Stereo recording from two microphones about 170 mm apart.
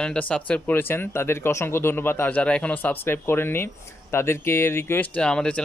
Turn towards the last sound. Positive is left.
turn(degrees=5)  # may be behind; listen again after turning